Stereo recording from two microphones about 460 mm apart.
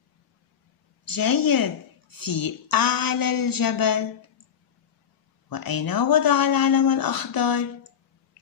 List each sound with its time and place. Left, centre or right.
1.0 s speech: left
5.5 s speech: left